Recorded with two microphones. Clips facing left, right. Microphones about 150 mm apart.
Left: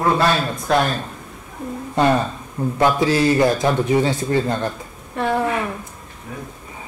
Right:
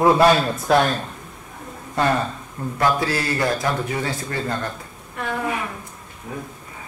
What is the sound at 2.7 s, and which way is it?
A man's voice, 20° left (ahead or behind).